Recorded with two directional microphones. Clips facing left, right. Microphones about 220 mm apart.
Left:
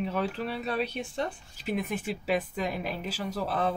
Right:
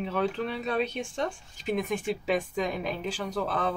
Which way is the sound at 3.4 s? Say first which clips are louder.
Left 1 dB; 35° left (ahead or behind).